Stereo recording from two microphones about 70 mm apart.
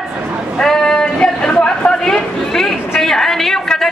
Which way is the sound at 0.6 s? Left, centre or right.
Centre.